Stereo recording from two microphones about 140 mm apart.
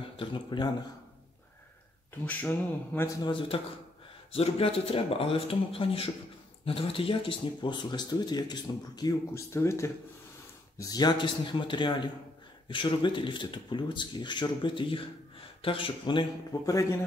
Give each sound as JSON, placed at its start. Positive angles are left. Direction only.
{"t": 0.2, "sound": "speech", "side_deg": 35}
{"t": 2.2, "sound": "speech", "side_deg": 15}
{"t": 3.3, "sound": "speech", "side_deg": 40}
{"t": 9.2, "sound": "speech", "side_deg": 20}